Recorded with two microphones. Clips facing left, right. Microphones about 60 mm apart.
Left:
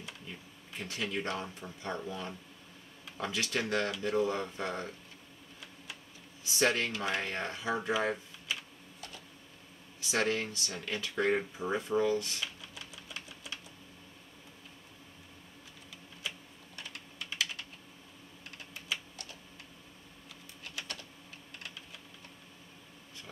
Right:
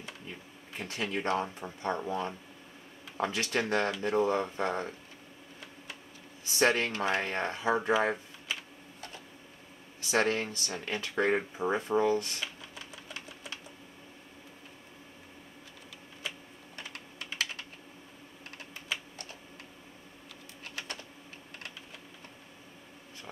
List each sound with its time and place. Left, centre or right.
0.7 s speech: right
6.6 s speech: right
10.1 s speech: right
11.5 s speech: right
12.2 s typewriter: right
16.3 s typing: right
18.9 s typing: right
20.7 s typing: right